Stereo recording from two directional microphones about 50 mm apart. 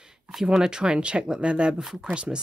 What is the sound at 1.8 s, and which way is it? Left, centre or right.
Speech, centre.